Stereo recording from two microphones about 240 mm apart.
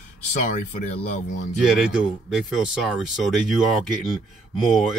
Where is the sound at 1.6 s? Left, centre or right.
Centre.